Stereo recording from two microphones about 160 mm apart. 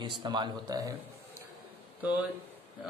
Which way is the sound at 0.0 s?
30° right (ahead or behind).